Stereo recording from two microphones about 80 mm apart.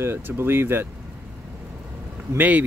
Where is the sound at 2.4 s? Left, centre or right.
Right.